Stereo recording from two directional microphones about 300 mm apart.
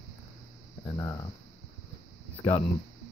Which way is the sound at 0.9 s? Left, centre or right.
Centre.